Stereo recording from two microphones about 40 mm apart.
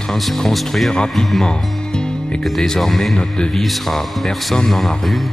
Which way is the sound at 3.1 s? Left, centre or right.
Left.